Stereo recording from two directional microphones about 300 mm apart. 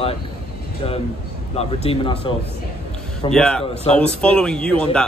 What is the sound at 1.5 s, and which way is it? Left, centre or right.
Speech, centre.